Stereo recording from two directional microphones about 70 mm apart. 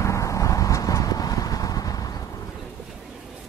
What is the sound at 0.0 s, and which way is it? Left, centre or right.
Horse, left.